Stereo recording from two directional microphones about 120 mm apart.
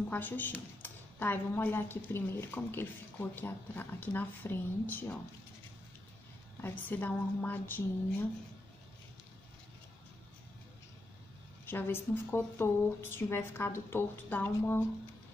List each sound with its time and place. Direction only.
0.1 s a woman's voice: 15° left (ahead or behind)
6.6 s a woman's voice: 15° left (ahead or behind)
11.6 s speech: 20° left (ahead or behind)